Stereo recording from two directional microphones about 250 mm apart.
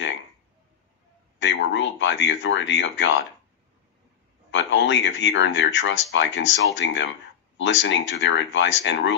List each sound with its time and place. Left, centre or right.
1.4 s speech: left
4.5 s speech: left